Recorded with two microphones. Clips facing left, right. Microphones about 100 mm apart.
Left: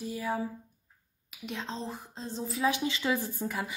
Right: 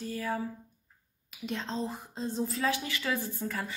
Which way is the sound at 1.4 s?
5° left (ahead or behind).